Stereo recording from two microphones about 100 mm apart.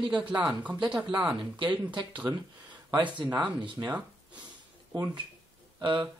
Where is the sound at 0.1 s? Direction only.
15° right (ahead or behind).